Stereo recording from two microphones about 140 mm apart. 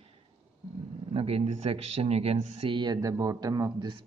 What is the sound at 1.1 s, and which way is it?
Speech, 45° right (ahead or behind).